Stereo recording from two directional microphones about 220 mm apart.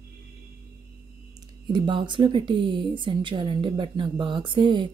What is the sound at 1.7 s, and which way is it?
A woman's voice, 20° right (ahead or behind).